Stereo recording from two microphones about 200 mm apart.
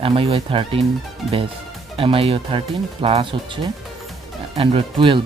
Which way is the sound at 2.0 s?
30° right (ahead or behind).